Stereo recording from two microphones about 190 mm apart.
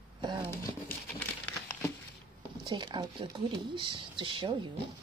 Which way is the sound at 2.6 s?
25° right (ahead or behind).